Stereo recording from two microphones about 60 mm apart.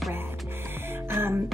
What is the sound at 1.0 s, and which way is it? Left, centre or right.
Music, right.